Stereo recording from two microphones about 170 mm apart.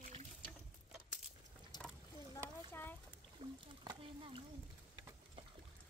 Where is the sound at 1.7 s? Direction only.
25° left (ahead or behind).